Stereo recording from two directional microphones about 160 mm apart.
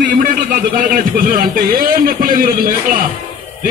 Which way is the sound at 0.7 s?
60° right (ahead or behind).